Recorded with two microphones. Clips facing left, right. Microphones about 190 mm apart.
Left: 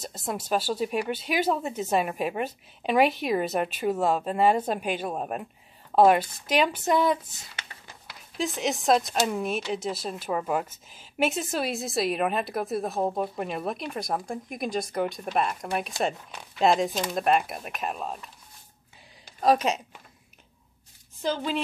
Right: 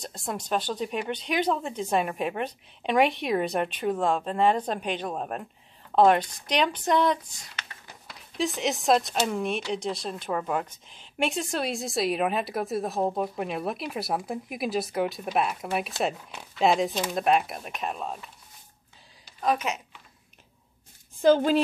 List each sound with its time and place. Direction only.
0.0 s speech: 5° left (ahead or behind)
19.4 s a woman's voice: 35° left (ahead or behind)
21.2 s a woman's voice: 50° right (ahead or behind)